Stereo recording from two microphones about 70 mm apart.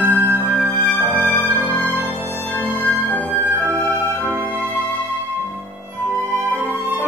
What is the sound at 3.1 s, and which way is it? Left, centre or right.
Music, left.